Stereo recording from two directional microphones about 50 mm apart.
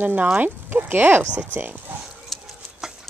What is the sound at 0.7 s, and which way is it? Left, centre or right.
Speech, right.